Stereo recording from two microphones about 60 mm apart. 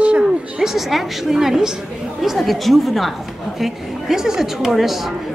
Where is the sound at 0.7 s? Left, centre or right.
Centre.